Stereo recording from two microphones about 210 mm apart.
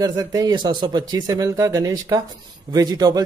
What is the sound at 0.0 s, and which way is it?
Speech, 20° right (ahead or behind).